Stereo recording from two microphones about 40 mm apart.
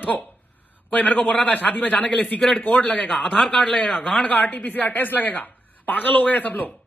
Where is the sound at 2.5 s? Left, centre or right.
Left.